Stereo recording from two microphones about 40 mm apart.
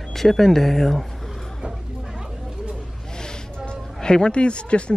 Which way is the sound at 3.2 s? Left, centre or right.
Left.